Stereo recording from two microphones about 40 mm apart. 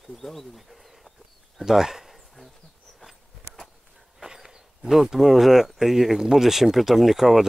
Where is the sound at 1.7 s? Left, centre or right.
Centre.